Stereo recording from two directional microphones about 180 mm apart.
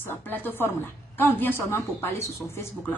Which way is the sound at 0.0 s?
10° left (ahead or behind).